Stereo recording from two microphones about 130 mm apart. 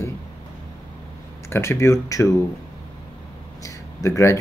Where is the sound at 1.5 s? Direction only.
20° left (ahead or behind).